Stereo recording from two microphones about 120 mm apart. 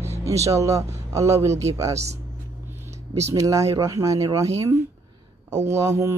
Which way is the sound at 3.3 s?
25° right (ahead or behind).